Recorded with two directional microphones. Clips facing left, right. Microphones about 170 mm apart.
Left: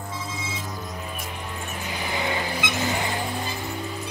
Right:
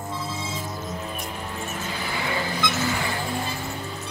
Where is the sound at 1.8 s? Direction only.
15° left (ahead or behind).